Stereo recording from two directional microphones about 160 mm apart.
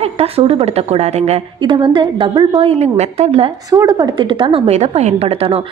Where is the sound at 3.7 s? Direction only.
25° right (ahead or behind).